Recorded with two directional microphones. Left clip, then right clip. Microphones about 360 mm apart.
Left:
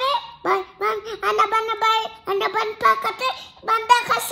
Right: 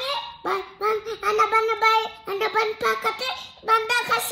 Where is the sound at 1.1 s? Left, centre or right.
Left.